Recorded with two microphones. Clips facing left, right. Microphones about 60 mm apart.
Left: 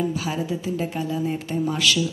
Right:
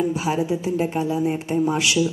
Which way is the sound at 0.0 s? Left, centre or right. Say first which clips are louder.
Right 4 dB; right.